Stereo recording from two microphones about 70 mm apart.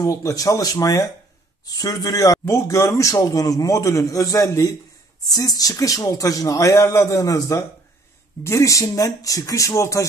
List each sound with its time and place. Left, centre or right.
0.0 s speech: left
1.7 s speech: left
2.4 s a man's voice: left
8.8 s a man's voice: left